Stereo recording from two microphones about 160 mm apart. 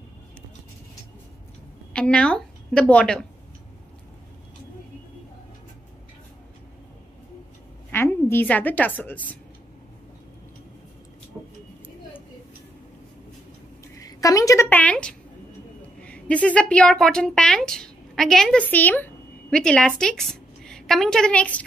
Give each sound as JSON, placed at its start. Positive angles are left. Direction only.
{"t": 2.0, "sound": "a woman's voice", "side_deg": 5}
{"t": 7.9, "sound": "a woman's voice", "side_deg": 15}
{"t": 13.9, "sound": "a woman's voice", "side_deg": 20}